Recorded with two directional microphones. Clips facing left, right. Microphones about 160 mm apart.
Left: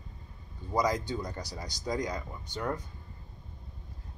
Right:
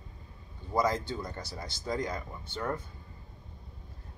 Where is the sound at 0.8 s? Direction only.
15° left (ahead or behind).